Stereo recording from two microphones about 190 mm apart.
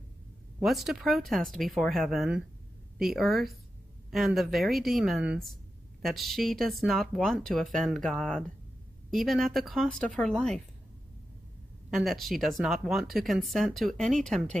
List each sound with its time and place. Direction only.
0.6 s speech: centre (ahead or behind)
11.9 s speech: centre (ahead or behind)